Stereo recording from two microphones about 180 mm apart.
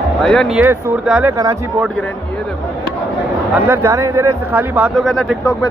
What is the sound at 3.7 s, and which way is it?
Speech, 15° right (ahead or behind).